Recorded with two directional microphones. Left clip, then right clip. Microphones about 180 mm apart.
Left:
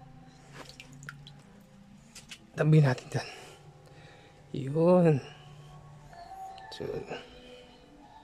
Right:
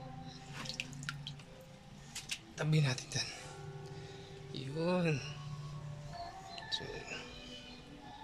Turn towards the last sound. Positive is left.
turn(degrees=45)  # may be behind; listen again after turning